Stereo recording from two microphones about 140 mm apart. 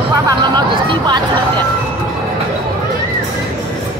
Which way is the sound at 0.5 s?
30° right (ahead or behind).